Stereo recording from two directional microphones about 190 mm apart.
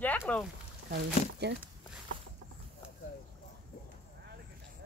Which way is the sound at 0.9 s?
60° right (ahead or behind).